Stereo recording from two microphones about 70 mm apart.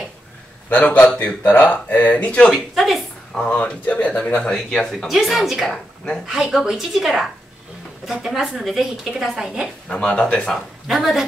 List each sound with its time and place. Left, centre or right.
0.7 s speech: left
2.5 s a woman's voice: centre
3.3 s a woman's voice: centre
9.8 s speech: centre
10.5 s speech: centre